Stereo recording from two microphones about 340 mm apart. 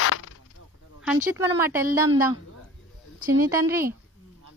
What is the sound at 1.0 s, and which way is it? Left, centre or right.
Speech, centre.